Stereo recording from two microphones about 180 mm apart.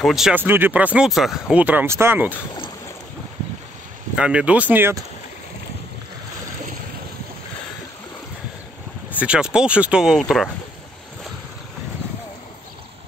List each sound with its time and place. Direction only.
0.0 s speech: centre (ahead or behind)
4.1 s speech: 5° right (ahead or behind)
9.2 s speech: 5° right (ahead or behind)